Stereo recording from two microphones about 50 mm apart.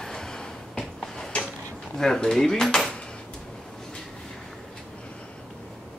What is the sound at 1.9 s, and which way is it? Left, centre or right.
Speech, centre.